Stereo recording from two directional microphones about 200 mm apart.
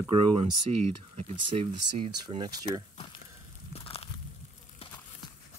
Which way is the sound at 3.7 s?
30° left (ahead or behind).